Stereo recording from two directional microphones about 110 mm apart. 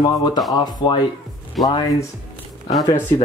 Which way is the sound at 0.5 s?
40° left (ahead or behind).